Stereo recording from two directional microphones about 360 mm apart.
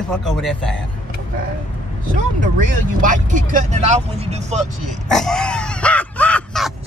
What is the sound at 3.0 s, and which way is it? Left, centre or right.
Speech, right.